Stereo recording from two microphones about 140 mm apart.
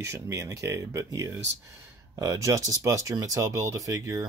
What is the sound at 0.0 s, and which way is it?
Speech, 20° right (ahead or behind).